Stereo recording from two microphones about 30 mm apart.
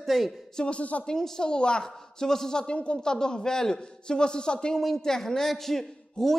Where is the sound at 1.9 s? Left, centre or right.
Centre.